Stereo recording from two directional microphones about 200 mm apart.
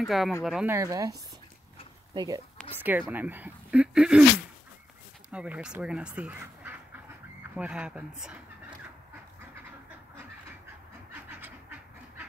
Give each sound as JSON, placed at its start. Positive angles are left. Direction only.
{"t": 0.0, "sound": "speech", "side_deg": 0}
{"t": 0.7, "sound": "speech", "side_deg": -15}
{"t": 2.1, "sound": "speech", "side_deg": -20}
{"t": 5.3, "sound": "speech", "side_deg": -5}